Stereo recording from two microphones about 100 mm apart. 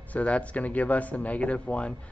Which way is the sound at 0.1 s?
10° left (ahead or behind).